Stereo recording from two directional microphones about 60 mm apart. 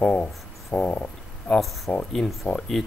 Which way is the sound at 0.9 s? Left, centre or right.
Left.